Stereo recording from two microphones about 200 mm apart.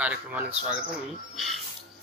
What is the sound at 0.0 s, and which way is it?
A man's voice, 5° right (ahead or behind).